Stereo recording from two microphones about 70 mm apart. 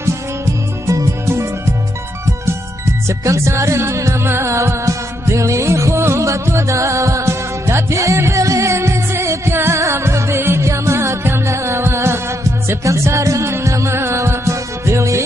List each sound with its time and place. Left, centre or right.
0.0 s music: right